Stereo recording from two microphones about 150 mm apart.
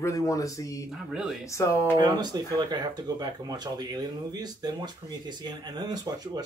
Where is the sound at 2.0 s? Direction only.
25° right (ahead or behind).